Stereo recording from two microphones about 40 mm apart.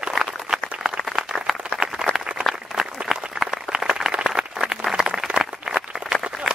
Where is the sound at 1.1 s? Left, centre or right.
Centre.